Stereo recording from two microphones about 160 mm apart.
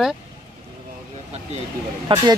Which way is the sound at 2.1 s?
30° right (ahead or behind).